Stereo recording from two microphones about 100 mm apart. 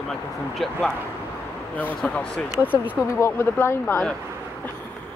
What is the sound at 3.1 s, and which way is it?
Speech, 25° left (ahead or behind).